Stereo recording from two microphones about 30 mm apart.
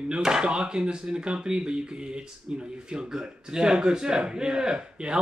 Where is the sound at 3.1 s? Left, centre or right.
Right.